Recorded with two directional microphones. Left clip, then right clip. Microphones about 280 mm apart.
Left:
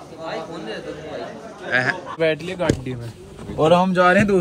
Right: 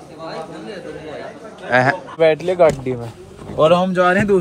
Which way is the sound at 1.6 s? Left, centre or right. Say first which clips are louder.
Right 5 dB; centre.